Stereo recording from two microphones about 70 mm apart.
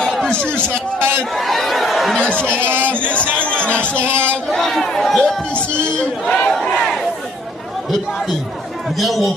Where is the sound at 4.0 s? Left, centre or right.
Right.